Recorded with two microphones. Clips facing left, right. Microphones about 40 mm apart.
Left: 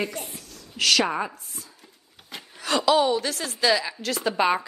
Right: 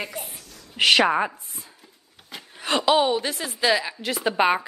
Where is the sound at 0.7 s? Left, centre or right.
Right.